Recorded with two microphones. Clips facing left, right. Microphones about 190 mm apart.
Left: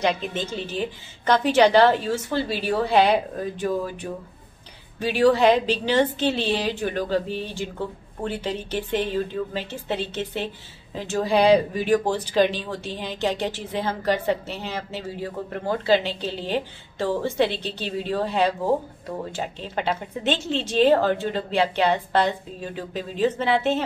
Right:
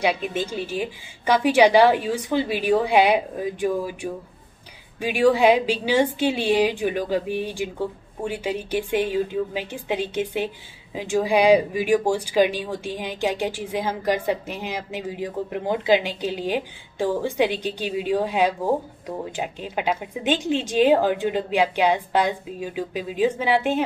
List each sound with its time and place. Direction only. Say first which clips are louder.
0.0 s a woman's voice: right 1 dB; 10° right (ahead or behind)